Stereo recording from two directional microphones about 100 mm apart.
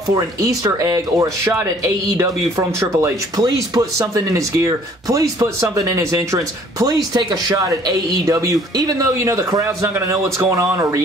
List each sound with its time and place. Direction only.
0.1 s speech: 35° right (ahead or behind)
3.3 s speech: 40° right (ahead or behind)